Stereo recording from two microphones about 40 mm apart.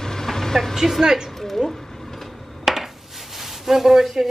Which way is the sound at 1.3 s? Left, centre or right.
Centre.